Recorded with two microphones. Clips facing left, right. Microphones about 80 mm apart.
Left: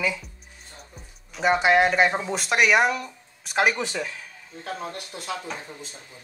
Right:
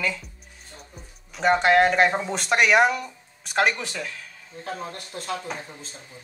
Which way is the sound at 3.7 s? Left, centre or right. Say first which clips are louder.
Left 4 dB; centre.